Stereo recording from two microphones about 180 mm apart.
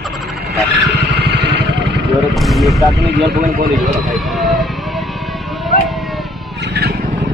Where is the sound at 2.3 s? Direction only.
Centre (ahead or behind).